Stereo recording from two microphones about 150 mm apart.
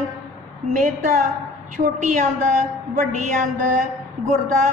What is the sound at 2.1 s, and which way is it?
A woman's voice, 55° right (ahead or behind).